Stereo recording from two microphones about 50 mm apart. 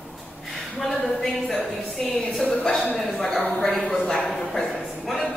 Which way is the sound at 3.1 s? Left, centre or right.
Centre.